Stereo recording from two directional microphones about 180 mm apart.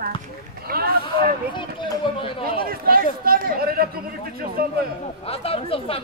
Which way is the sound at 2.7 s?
55° right (ahead or behind).